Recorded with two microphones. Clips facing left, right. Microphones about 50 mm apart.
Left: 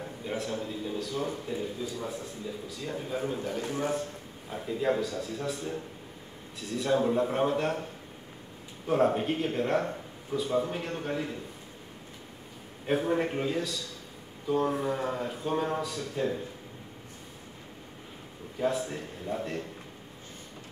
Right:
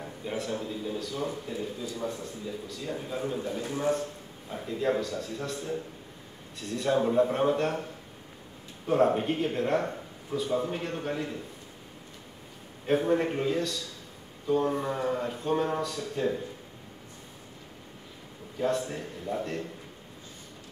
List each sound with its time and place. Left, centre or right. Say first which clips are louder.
0.0 s a man's voice: even; centre
3.3 s a man's voice: even; left
4.5 s a man's voice: even; centre
8.8 s a man's voice: right 1 dB; centre
12.8 s a man's voice: right 2 dB; centre
18.6 s a man's voice: right 1 dB; centre